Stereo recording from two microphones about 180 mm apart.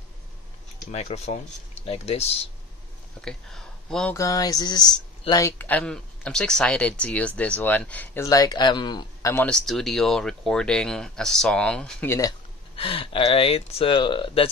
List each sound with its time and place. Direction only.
0.9 s speech: 35° left (ahead or behind)
3.2 s speech: 5° left (ahead or behind)
4.2 s speech: 20° left (ahead or behind)
5.6 s speech: 10° left (ahead or behind)
12.7 s speech: 30° left (ahead or behind)